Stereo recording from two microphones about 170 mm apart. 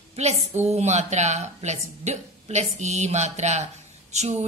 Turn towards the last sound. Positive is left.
turn(degrees=-40)  # may be behind; listen again after turning